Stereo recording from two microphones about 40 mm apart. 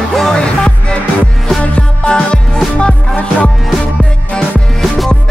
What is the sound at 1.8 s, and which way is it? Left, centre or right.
Music, left.